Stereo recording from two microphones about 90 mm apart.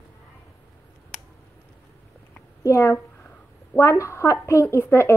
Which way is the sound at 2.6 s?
35° left (ahead or behind).